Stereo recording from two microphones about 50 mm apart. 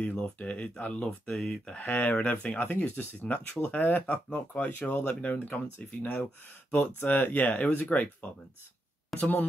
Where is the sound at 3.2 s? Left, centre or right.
Centre.